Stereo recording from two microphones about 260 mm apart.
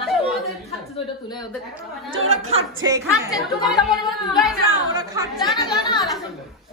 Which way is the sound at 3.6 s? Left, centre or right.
Centre.